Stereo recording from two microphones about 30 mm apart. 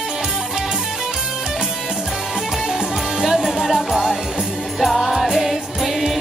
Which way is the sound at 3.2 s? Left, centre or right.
Centre.